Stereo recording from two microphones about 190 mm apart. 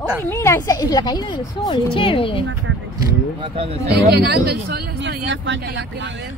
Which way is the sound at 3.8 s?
60° right (ahead or behind).